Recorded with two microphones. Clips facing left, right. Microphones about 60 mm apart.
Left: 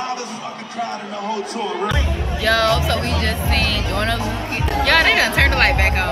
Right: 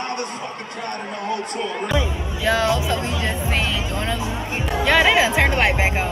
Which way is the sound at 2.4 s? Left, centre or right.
Right.